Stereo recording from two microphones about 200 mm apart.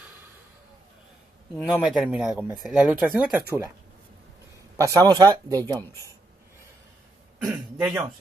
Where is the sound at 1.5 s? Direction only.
Centre (ahead or behind).